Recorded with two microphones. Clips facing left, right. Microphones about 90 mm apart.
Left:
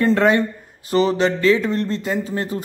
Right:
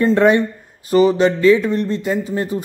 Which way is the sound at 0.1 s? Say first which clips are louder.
Right 4 dB; 25° right (ahead or behind).